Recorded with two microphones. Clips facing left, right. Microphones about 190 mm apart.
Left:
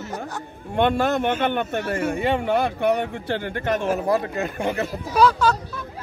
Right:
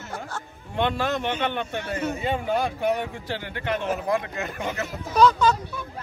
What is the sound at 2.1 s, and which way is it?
Speech, 65° left (ahead or behind).